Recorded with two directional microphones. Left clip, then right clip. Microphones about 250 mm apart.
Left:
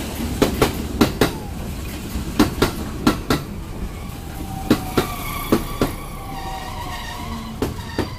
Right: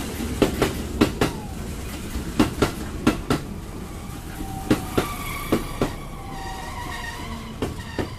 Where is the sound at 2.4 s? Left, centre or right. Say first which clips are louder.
Left 3 dB; left.